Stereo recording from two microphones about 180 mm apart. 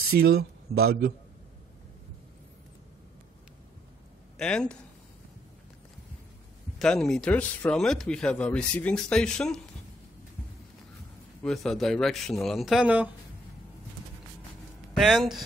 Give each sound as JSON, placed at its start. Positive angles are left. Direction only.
{"t": 0.1, "sound": "speech", "side_deg": -60}
{"t": 4.4, "sound": "speech", "side_deg": 5}
{"t": 6.8, "sound": "speech", "side_deg": 5}
{"t": 11.4, "sound": "speech", "side_deg": 0}
{"t": 15.0, "sound": "speech", "side_deg": 0}